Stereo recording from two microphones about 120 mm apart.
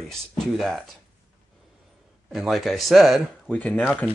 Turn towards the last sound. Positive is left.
turn(degrees=15)  # may be behind; listen again after turning